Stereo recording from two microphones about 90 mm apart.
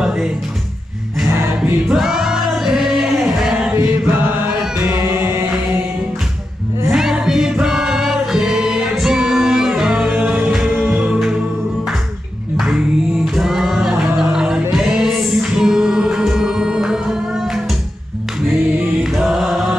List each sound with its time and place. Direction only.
0.0 s music: 10° right (ahead or behind)
3.7 s chant: 25° right (ahead or behind)
4.7 s music: 15° right (ahead or behind)
6.9 s music: 5° right (ahead or behind)
12.5 s a capella: 5° right (ahead or behind)
19.0 s music: 5° right (ahead or behind)